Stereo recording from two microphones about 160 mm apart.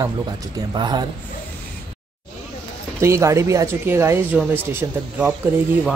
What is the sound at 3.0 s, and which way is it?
Speech, 15° right (ahead or behind).